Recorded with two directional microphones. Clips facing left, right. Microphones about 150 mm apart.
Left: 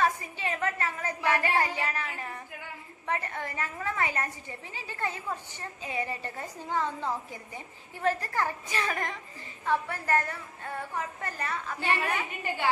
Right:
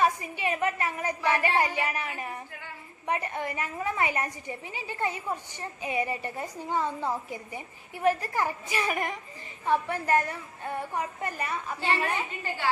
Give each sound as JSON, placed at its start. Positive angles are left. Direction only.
{"t": 0.0, "sound": "a woman's voice", "side_deg": -15}